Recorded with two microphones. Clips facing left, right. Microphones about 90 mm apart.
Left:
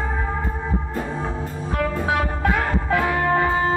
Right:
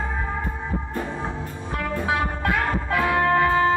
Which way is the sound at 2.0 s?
25° left (ahead or behind).